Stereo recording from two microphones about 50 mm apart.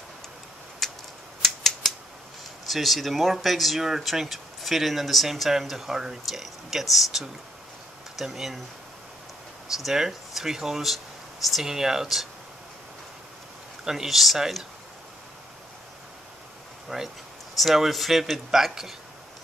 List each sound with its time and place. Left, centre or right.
0.8 s tick-tock: centre
1.4 s typewriter: centre
2.7 s speech: centre
9.7 s speech: centre
13.8 s speech: centre
16.9 s speech: centre